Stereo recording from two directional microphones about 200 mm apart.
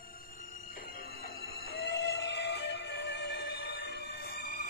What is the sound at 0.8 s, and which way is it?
Music, 50° left (ahead or behind).